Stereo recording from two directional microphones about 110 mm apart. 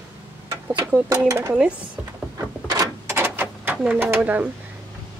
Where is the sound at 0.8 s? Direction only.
25° right (ahead or behind).